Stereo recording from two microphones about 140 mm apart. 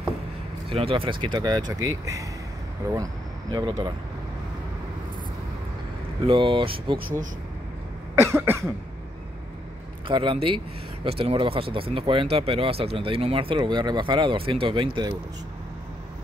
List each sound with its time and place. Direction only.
0.7 s speech: 40° right (ahead or behind); by 2.2 s 25° right (ahead or behind)
3.5 s speech: 30° right (ahead or behind)
6.2 s speech: 40° right (ahead or behind)
8.2 s cough: 15° right (ahead or behind)
10.0 s speech: 35° right (ahead or behind)